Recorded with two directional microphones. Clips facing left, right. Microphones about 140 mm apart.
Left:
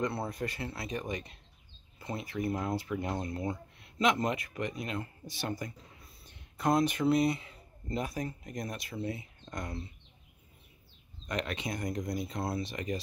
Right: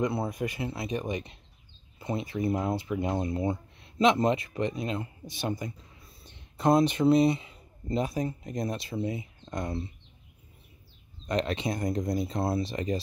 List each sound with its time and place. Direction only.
0.0 s speech: 15° right (ahead or behind)
11.2 s speech: 30° right (ahead or behind)